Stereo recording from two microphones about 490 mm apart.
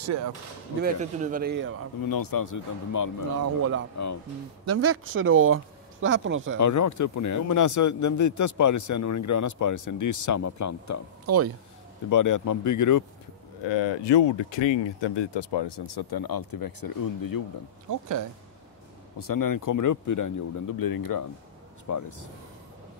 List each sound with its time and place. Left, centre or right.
0.8 s speech: centre
2.0 s a man's voice: left
4.6 s speech: right
6.6 s a man's voice: left
11.2 s speech: right
12.1 s a man's voice: left
13.7 s speech: left
17.8 s speech: right
19.1 s a man's voice: left